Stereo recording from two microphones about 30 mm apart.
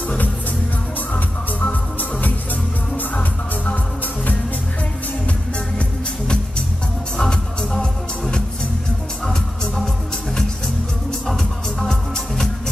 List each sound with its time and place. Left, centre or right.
1.7 s music: left
7.2 s music: left
9.2 s music: centre
11.8 s music: centre